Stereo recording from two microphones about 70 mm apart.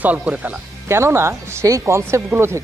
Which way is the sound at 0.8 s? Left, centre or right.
Right.